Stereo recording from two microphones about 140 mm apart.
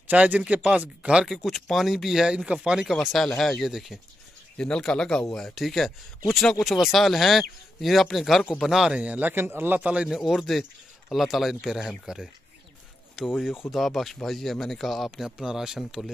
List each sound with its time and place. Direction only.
0.1 s a man's voice: 10° right (ahead or behind)